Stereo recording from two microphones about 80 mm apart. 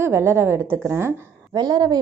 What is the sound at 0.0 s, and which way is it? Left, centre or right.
A woman's voice, right.